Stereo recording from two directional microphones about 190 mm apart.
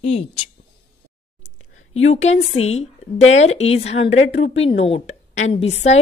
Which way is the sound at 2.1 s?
35° left (ahead or behind).